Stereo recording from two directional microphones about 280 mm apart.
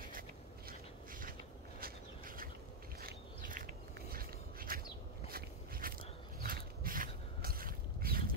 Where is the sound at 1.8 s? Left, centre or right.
Right.